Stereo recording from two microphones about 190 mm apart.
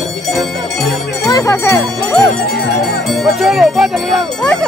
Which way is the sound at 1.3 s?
15° left (ahead or behind).